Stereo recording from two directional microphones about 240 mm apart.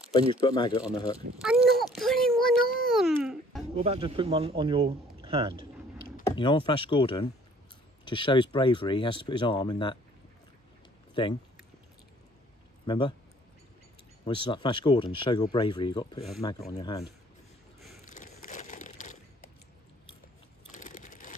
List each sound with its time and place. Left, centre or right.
0.3 s speech: centre
1.4 s a sound: centre
3.7 s speech: right
6.3 s speech: left
12.8 s speech: centre
14.2 s speech: centre
17.7 s a sound: centre
18.0 s crushing: left
20.7 s a sound: left